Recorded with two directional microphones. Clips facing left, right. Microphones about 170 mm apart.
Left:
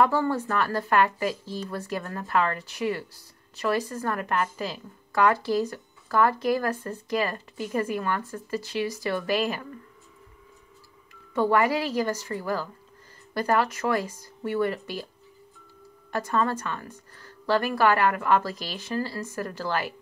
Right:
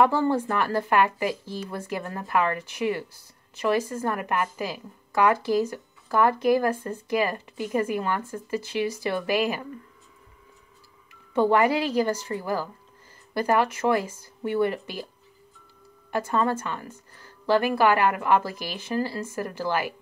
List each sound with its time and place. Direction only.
0.0 s a woman's voice: 15° right (ahead or behind)
11.3 s a woman's voice: 15° right (ahead or behind)
16.3 s a woman's voice: 20° right (ahead or behind)